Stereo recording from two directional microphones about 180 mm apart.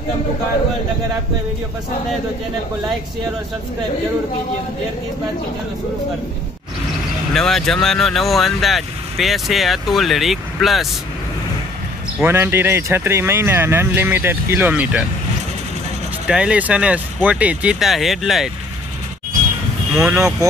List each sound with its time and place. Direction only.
7.3 s speech: centre (ahead or behind)
12.2 s speech: 15° right (ahead or behind)
16.3 s speech: 5° right (ahead or behind)
20.0 s speech: 15° right (ahead or behind)